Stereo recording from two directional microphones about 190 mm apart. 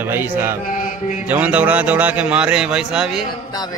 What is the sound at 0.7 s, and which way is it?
Mantra, 40° left (ahead or behind).